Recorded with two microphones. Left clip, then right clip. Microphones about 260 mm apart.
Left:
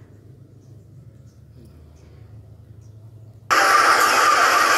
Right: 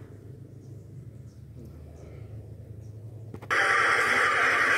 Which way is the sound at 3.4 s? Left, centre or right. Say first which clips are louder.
Left 8 dB; left.